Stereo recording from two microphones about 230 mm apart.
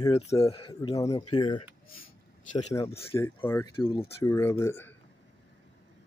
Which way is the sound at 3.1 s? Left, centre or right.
Centre.